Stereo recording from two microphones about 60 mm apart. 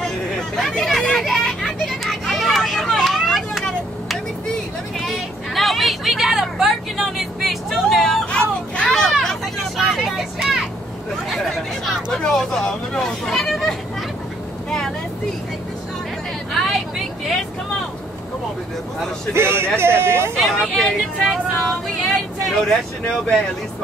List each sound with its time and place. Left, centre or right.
0.6 s children playing: centre
4.9 s vehicle: centre
8.3 s vehicle: centre
11.2 s chatter: centre
12.2 s speech: centre
19.3 s a man's voice: right
20.3 s speech: centre